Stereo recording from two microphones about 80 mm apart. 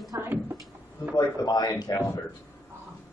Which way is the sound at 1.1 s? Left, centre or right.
Left.